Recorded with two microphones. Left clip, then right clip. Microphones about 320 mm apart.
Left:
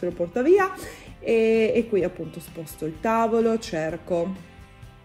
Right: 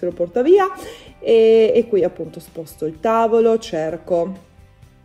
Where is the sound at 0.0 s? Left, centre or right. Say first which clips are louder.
Right 6 dB; left.